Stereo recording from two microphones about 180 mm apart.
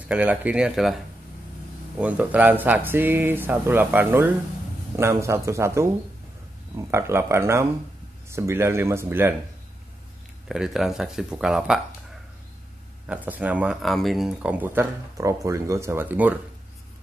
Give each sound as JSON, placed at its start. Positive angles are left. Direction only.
{"t": 0.1, "sound": "speech", "side_deg": -5}
{"t": 2.0, "sound": "speech", "side_deg": -10}
{"t": 6.9, "sound": "speech", "side_deg": -15}
{"t": 10.5, "sound": "speech", "side_deg": 0}
{"t": 13.1, "sound": "speech", "side_deg": -10}